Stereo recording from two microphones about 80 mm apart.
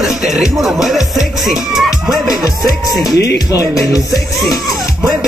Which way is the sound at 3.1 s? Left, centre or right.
Left.